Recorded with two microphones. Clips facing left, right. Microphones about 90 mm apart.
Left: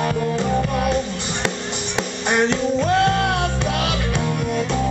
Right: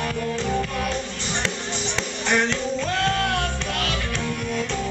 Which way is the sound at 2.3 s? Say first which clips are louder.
Left 4 dB; 20° left (ahead or behind).